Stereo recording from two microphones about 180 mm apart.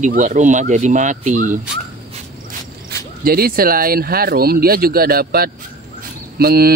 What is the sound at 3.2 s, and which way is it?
Speech, 55° right (ahead or behind).